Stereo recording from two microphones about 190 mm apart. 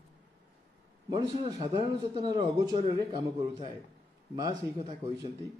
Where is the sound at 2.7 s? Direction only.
30° right (ahead or behind).